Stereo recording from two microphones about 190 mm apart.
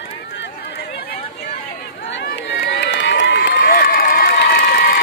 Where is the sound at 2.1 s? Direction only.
65° left (ahead or behind).